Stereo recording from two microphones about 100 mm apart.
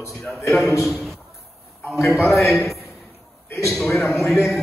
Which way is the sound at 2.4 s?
25° left (ahead or behind).